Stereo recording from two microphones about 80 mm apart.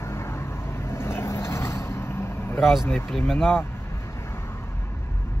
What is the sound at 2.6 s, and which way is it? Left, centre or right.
Speech, centre.